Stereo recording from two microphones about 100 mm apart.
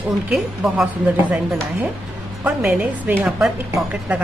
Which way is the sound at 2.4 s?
15° right (ahead or behind).